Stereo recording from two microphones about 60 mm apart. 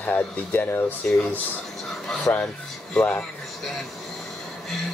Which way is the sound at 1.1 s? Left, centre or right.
Left.